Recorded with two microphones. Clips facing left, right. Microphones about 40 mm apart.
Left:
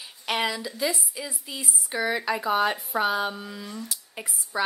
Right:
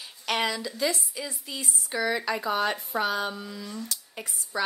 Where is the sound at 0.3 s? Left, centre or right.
Centre.